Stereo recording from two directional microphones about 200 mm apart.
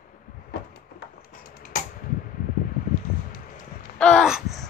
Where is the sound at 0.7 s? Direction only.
45° left (ahead or behind).